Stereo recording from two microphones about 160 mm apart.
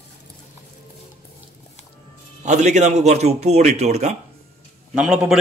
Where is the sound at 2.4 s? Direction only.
50° right (ahead or behind).